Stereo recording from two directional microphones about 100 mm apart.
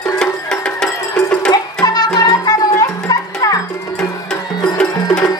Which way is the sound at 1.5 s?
45° left (ahead or behind).